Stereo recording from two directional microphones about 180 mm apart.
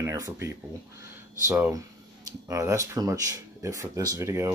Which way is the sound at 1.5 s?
15° right (ahead or behind).